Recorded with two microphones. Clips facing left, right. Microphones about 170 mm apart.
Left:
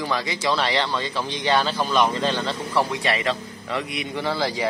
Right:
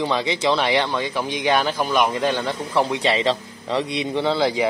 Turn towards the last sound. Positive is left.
turn(degrees=-20)  # may be behind; listen again after turning